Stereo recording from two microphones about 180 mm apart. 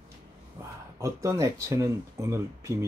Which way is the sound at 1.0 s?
15° right (ahead or behind).